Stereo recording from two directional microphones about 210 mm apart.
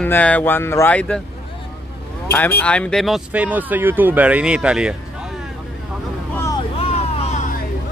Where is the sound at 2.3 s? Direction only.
10° left (ahead or behind).